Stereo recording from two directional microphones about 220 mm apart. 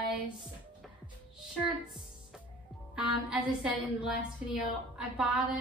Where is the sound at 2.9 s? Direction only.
5° right (ahead or behind).